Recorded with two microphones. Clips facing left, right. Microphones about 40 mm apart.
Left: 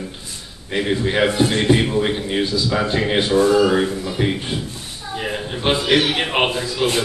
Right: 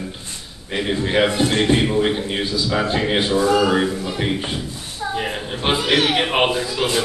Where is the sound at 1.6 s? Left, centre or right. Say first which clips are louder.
Left 1 dB; centre.